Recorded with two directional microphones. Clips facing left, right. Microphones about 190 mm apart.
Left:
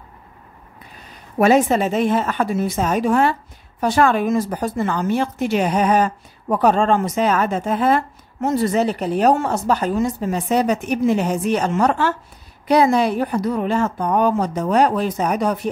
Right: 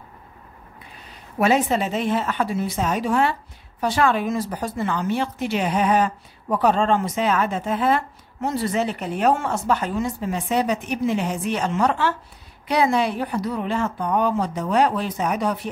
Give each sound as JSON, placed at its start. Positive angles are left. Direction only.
{"t": 1.4, "sound": "speech", "side_deg": 45}